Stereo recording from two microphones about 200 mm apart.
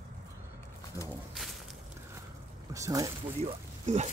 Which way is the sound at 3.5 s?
35° right (ahead or behind).